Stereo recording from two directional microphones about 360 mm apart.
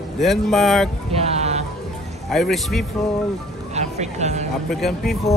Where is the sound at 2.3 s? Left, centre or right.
Centre.